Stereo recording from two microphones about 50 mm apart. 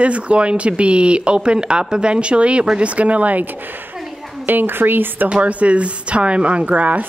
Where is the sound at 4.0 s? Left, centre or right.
Centre.